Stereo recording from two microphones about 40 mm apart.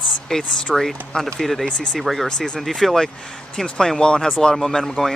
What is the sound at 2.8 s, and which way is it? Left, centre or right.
Speech, centre.